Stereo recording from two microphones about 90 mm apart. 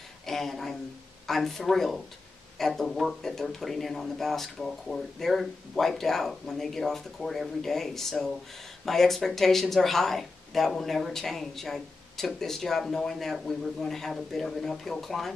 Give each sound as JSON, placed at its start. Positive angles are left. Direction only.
{"t": 0.3, "sound": "speech", "side_deg": 0}